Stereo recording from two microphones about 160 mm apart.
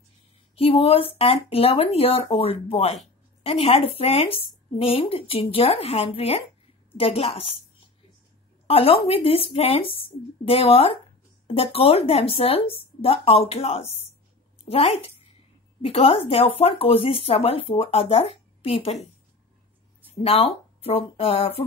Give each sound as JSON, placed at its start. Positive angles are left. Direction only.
{"t": 0.6, "sound": "speech", "side_deg": 35}
{"t": 8.6, "sound": "a woman's voice", "side_deg": 35}
{"t": 20.2, "sound": "speech", "side_deg": 40}